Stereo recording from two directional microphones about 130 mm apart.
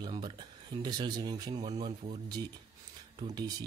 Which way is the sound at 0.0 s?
35° right (ahead or behind).